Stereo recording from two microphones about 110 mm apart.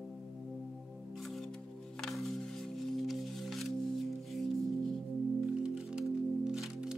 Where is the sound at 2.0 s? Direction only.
5° left (ahead or behind).